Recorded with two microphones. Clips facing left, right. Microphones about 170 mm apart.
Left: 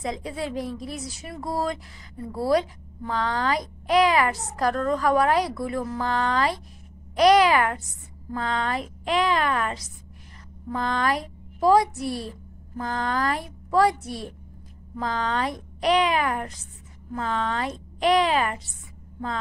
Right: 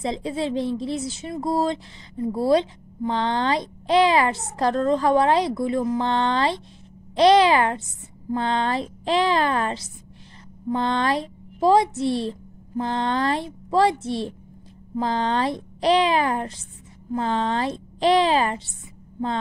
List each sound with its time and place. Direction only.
0.0 s a child's voice: 25° right (ahead or behind)